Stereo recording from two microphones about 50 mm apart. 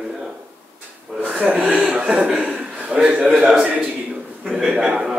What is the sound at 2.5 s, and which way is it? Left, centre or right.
Chuckle, right.